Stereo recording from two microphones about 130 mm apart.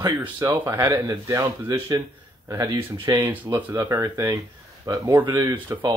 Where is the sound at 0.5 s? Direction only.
30° right (ahead or behind).